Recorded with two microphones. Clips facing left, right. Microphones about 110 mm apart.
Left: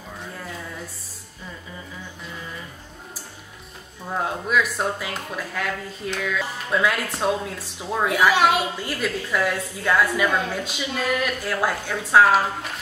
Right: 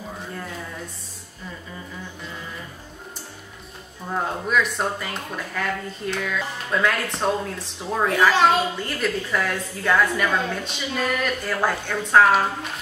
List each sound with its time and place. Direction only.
4.1 s a woman's voice: 5° left (ahead or behind)